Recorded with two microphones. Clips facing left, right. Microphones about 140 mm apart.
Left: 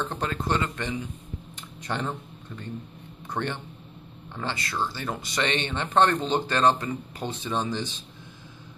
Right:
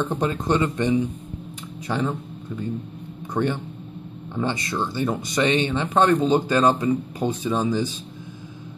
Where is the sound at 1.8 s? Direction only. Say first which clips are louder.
Right 5 dB; 5° right (ahead or behind).